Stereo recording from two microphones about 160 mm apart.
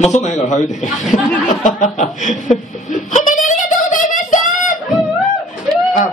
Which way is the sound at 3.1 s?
50° left (ahead or behind).